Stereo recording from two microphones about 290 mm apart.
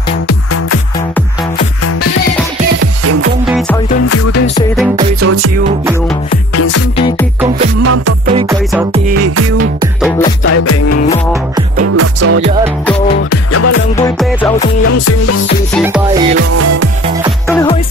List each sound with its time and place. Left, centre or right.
3.4 s music: centre
5.2 s music: right
6.5 s music: left
8.4 s music: centre
9.1 s music: right
10.4 s music: left
11.8 s music: right
13.3 s music: left
13.9 s music: centre
14.9 s music: left
15.7 s music: centre
16.5 s music: right